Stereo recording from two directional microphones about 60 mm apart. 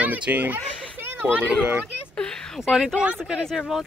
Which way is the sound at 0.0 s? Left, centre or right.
Right.